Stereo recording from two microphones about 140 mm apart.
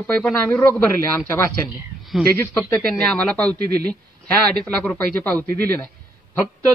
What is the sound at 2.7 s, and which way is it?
Speech, 10° left (ahead or behind).